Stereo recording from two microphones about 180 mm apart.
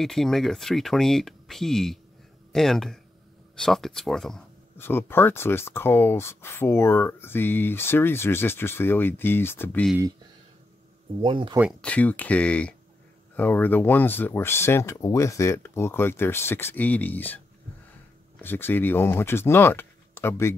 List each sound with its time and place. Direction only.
0.0 s speech: centre (ahead or behind)
4.7 s speech: 10° left (ahead or behind)
11.2 s speech: 30° right (ahead or behind)
11.8 s speech: 10° left (ahead or behind)
18.4 s speech: 10° left (ahead or behind)